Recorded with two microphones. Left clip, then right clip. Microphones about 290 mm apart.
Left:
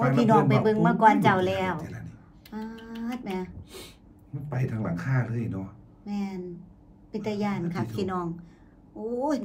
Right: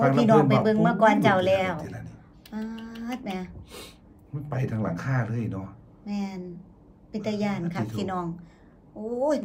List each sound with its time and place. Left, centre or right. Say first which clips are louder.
0.0 s speech: right 2 dB; centre
4.5 s speech: right 2 dB; centre
6.0 s a woman's voice: even; centre